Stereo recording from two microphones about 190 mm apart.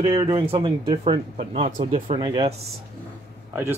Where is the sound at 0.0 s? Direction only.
25° right (ahead or behind).